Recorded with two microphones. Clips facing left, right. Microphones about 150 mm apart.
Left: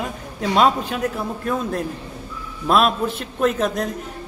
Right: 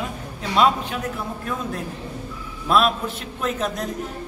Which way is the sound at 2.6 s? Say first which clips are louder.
Left 2 dB; 40° left (ahead or behind).